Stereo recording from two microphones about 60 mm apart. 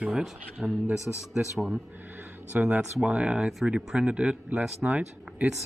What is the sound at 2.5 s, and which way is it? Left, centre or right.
Speech, right.